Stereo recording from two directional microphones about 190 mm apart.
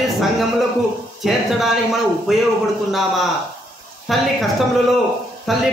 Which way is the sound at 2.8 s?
Centre (ahead or behind).